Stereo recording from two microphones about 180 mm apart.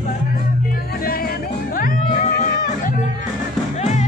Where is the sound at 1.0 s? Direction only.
55° left (ahead or behind); by 4.1 s 40° left (ahead or behind).